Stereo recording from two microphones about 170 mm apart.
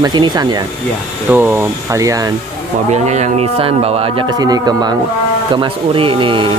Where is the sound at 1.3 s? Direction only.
15° right (ahead or behind).